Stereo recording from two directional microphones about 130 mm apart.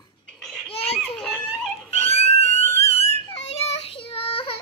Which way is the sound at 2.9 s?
50° left (ahead or behind).